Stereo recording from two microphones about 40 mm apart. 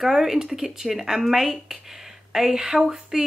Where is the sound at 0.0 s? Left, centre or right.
Centre.